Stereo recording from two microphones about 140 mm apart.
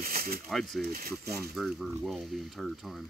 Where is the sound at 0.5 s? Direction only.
Centre (ahead or behind).